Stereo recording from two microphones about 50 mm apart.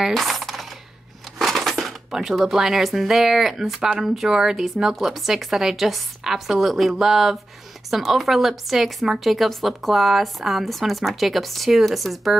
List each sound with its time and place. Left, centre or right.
0.1 s coin: centre
1.4 s speech: centre